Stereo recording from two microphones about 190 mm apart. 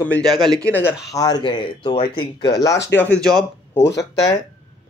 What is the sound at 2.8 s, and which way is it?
Speech, 10° left (ahead or behind).